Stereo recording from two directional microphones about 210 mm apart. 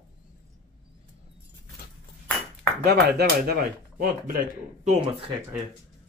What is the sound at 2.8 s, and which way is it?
Speech, 50° right (ahead or behind).